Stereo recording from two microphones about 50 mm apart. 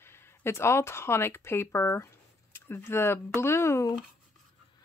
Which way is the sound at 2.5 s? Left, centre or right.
Left.